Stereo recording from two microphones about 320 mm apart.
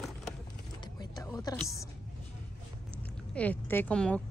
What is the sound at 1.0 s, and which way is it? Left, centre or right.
Music, centre.